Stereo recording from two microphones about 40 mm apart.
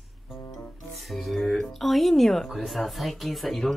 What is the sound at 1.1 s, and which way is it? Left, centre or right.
A woman's voice, centre.